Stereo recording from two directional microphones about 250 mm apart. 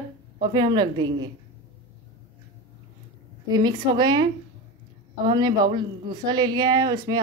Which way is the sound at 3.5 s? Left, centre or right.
Centre.